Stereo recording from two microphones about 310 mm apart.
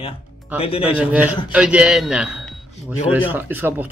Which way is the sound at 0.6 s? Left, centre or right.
Centre.